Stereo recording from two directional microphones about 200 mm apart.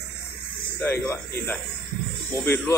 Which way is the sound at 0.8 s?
10° left (ahead or behind).